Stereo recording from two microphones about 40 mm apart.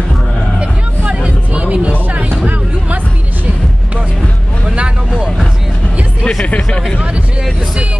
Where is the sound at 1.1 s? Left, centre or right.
Right.